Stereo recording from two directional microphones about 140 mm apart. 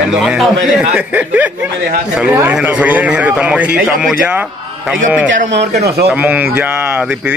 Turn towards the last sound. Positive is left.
turn(degrees=-10)  # may be behind; listen again after turning